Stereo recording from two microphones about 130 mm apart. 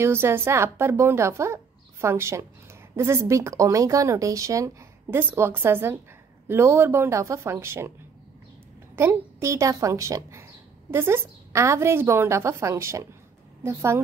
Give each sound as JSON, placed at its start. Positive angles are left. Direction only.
{"t": 0.0, "sound": "speech", "side_deg": -20}
{"t": 8.9, "sound": "speech", "side_deg": -20}